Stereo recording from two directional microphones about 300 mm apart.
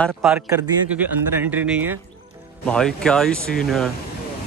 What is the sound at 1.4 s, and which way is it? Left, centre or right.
Speech, centre.